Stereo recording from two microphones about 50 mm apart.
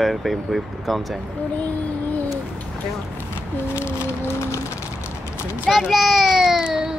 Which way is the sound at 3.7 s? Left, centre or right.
Left.